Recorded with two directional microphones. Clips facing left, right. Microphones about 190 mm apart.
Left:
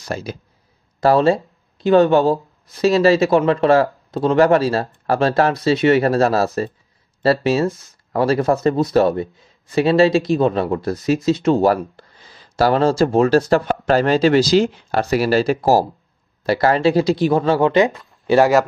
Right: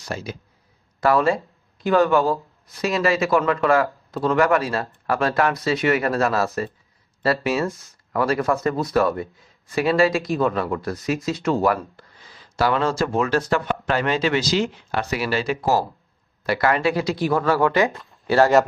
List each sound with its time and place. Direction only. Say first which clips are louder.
0.1 s speech: left 4 dB; 40° left (ahead or behind); by 18.5 s 20° left (ahead or behind)